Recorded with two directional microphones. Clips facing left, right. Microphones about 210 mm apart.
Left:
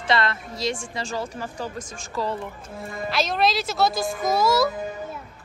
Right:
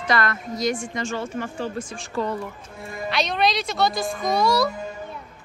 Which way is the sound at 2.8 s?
Centre (ahead or behind).